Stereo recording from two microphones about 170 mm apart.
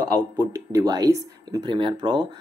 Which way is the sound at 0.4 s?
15° right (ahead or behind).